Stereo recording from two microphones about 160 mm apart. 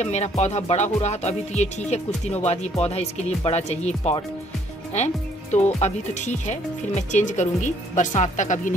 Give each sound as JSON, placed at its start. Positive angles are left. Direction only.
{"t": 0.0, "sound": "music", "side_deg": 45}
{"t": 4.9, "sound": "speech", "side_deg": 45}
{"t": 5.8, "sound": "music", "side_deg": 45}